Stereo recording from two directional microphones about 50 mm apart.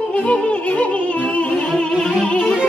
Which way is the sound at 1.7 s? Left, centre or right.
Centre.